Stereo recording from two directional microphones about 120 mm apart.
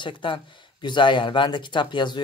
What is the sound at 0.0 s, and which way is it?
Speech, 45° left (ahead or behind).